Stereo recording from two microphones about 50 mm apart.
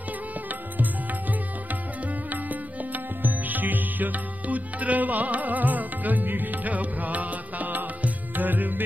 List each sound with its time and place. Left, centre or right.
2.9 s music: right